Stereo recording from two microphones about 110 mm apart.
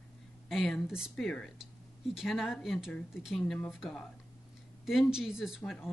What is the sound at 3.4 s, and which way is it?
Speech, 10° left (ahead or behind).